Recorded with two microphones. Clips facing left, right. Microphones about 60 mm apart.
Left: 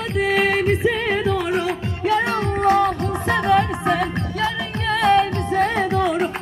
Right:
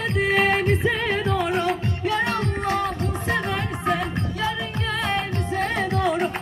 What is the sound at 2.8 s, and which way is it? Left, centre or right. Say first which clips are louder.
Music: left 5 dB; left.